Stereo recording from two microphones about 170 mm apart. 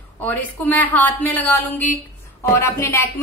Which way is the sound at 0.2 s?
10° left (ahead or behind).